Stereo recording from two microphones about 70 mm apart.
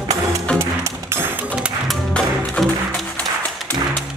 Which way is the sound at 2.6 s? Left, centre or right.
Centre.